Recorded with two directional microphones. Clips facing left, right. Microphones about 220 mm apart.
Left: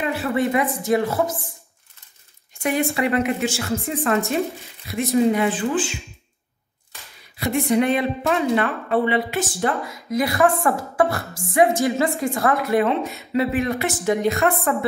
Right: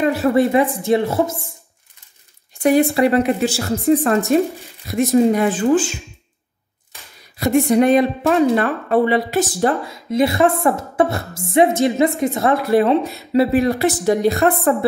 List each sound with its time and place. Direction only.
0.0 s a woman's voice: 40° right (ahead or behind)
2.6 s a woman's voice: 35° right (ahead or behind)
7.3 s a woman's voice: 40° right (ahead or behind)
9.8 s a woman's voice: 25° right (ahead or behind)